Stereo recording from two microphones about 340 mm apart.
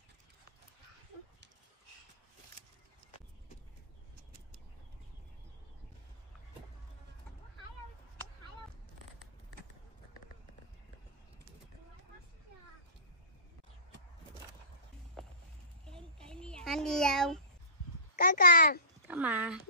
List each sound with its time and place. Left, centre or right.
15.2 s music: centre
16.2 s a sound: centre
18.1 s a child's voice: left
19.0 s speech: centre